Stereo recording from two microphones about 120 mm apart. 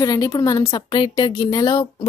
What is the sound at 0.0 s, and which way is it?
A woman's voice, 30° left (ahead or behind).